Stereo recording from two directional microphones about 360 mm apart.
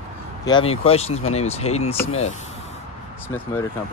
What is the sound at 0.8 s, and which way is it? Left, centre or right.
Speech, centre.